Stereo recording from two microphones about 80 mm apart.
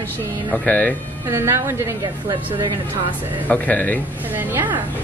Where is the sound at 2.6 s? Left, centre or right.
Right.